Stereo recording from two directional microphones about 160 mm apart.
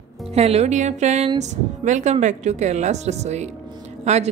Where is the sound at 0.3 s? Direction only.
40° right (ahead or behind).